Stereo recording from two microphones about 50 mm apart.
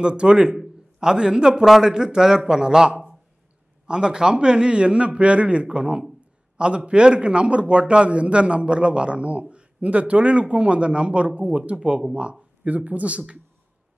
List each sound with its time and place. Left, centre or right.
0.0 s a man's voice: centre